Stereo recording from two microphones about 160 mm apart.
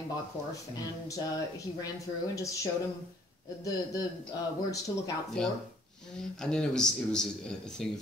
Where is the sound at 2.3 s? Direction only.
20° left (ahead or behind).